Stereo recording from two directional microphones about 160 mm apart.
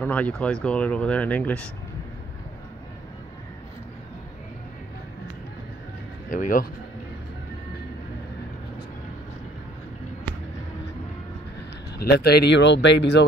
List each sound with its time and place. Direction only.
0.0 s speech: 10° left (ahead or behind)
6.3 s speech: 55° left (ahead or behind)
12.0 s speech: 85° left